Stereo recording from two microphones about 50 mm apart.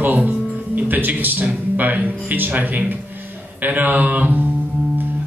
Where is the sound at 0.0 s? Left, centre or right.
Right.